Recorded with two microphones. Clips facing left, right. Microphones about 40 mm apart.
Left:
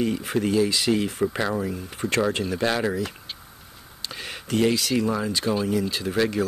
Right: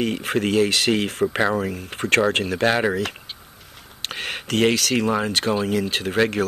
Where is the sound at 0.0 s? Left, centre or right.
Right.